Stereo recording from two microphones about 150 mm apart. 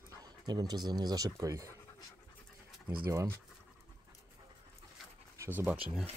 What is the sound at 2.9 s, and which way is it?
Speech, 20° right (ahead or behind).